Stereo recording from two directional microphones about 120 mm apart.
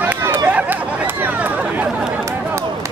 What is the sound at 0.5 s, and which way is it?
Chatter, 15° right (ahead or behind).